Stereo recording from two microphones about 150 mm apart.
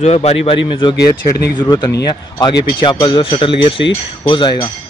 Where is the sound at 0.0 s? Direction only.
45° left (ahead or behind).